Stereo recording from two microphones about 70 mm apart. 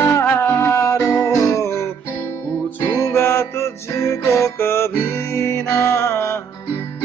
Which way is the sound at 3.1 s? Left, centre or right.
Left.